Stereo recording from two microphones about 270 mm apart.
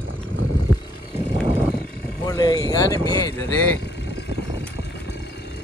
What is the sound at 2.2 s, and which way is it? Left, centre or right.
Speech, centre.